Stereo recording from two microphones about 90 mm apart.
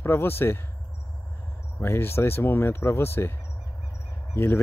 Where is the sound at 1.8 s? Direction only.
25° left (ahead or behind).